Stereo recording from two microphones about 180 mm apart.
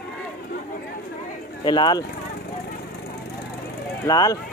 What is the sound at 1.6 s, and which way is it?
Speech, 25° left (ahead or behind).